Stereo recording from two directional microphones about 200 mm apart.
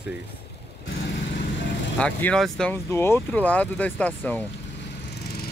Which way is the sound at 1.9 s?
5° left (ahead or behind).